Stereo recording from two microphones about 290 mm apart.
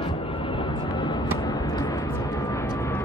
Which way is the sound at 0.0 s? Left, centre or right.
Centre.